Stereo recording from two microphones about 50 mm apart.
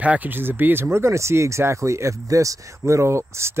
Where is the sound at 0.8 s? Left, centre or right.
Right.